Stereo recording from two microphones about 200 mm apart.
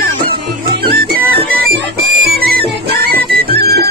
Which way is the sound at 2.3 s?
50° right (ahead or behind).